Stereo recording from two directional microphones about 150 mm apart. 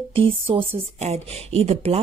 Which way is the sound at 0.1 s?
35° right (ahead or behind).